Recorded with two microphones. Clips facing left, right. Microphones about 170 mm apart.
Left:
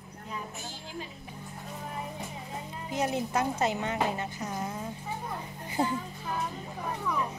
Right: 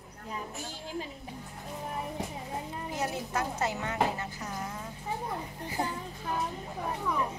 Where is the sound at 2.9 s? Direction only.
20° left (ahead or behind).